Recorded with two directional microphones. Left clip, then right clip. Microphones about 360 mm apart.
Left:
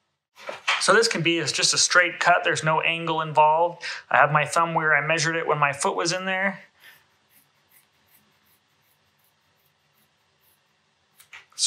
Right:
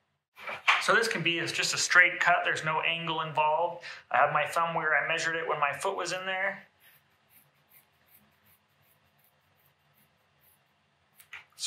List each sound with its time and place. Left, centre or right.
0.7 s speech: centre